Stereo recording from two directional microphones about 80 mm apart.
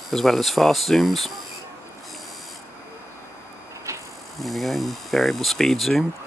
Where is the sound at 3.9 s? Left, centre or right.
Right.